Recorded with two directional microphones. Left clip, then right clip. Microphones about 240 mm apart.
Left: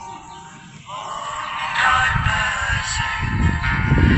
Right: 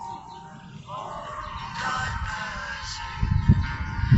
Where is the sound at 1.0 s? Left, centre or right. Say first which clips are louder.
Left 8 dB; left.